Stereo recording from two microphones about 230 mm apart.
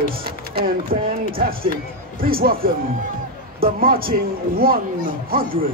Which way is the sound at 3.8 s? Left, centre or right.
Right.